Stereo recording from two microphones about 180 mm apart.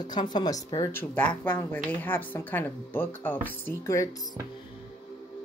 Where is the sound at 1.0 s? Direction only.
10° left (ahead or behind).